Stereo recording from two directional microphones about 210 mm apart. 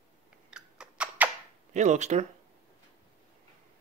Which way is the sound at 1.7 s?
35° right (ahead or behind).